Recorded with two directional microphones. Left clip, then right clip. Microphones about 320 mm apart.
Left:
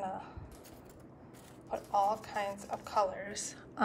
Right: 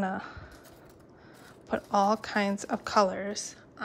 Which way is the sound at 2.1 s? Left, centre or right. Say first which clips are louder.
Right 7 dB; right.